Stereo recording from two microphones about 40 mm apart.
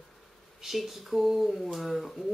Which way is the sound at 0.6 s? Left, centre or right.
Centre.